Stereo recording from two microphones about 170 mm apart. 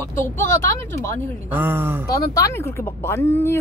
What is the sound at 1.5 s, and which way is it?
Speech, 10° right (ahead or behind).